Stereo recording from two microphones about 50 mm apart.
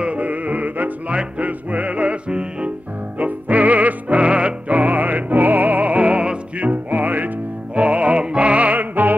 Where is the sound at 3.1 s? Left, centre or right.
Right.